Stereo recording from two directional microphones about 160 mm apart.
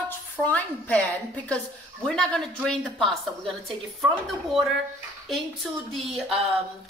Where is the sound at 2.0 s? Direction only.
5° left (ahead or behind).